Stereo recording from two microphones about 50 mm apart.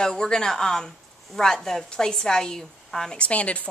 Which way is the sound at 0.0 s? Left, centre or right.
Centre.